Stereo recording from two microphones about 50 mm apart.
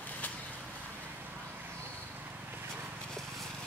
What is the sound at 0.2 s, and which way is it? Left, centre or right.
Vehicle, left.